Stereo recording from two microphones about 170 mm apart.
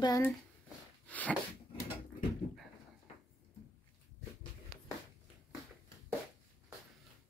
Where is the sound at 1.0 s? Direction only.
10° left (ahead or behind).